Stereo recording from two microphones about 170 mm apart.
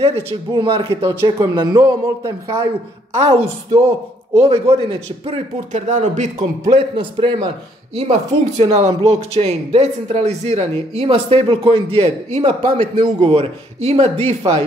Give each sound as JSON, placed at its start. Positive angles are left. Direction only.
{"t": 0.5, "sound": "speech", "side_deg": -30}
{"t": 3.3, "sound": "speech", "side_deg": -40}
{"t": 5.7, "sound": "a man's voice", "side_deg": -45}
{"t": 6.7, "sound": "speech", "side_deg": -30}
{"t": 8.0, "sound": "speech", "side_deg": -40}